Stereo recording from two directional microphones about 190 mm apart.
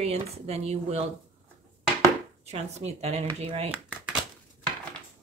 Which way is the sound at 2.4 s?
35° right (ahead or behind).